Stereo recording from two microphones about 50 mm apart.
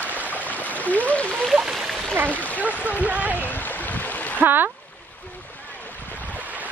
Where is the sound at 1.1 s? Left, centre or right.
Left.